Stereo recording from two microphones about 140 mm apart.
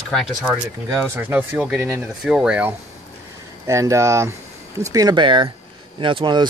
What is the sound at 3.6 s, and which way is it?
Speech, 20° right (ahead or behind).